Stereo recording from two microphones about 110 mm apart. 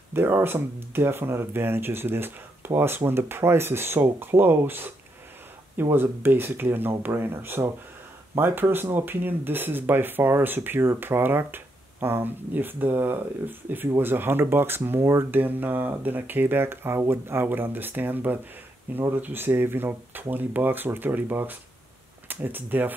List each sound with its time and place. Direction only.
0.1 s speech: 20° right (ahead or behind)